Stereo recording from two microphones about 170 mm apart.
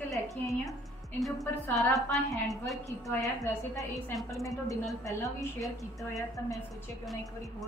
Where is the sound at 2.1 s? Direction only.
20° left (ahead or behind).